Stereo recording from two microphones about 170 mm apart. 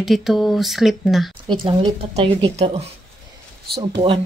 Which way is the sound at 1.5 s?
30° right (ahead or behind).